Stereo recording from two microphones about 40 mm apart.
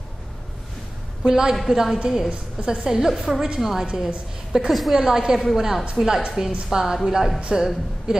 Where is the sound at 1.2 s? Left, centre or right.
Centre.